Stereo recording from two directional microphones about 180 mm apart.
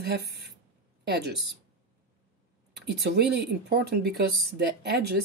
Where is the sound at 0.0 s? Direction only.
65° right (ahead or behind).